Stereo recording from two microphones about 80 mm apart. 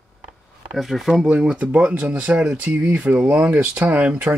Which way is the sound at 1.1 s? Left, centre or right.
Centre.